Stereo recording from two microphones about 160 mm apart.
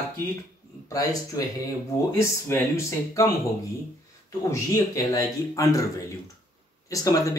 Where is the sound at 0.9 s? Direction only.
20° left (ahead or behind).